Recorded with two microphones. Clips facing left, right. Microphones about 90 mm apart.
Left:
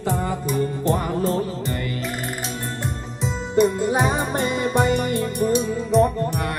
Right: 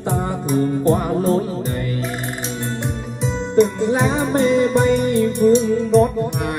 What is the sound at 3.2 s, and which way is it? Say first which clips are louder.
Music: right 3 dB; 5° left (ahead or behind).